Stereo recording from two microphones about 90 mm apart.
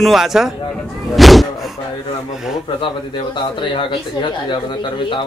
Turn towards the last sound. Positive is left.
turn(degrees=65)  # may be behind; listen again after turning